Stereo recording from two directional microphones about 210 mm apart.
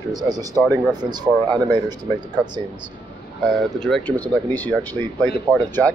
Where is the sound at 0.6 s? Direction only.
5° left (ahead or behind).